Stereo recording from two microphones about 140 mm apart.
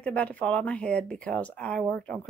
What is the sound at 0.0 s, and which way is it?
Speech, 10° left (ahead or behind).